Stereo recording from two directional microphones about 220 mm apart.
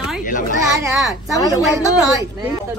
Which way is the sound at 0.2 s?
35° left (ahead or behind).